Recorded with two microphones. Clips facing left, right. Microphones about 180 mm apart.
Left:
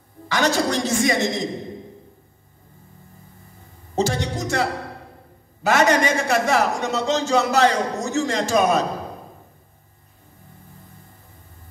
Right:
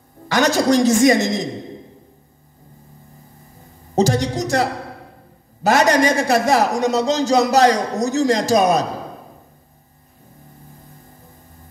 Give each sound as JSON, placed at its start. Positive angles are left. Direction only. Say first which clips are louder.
{"t": 0.3, "sound": "a woman's voice", "louder": "right 5 dB", "side_deg": -40}
{"t": 3.9, "sound": "a woman's voice", "louder": "right 5 dB", "side_deg": -40}